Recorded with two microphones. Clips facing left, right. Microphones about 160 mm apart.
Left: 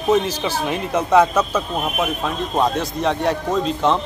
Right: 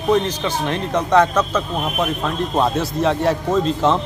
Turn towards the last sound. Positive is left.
turn(degrees=0)  # may be behind; listen again after turning